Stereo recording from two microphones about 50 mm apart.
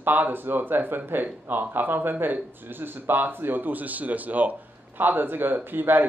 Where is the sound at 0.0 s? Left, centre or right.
Right.